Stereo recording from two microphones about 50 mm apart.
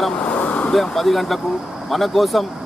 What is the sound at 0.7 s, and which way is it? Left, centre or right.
Speech, centre.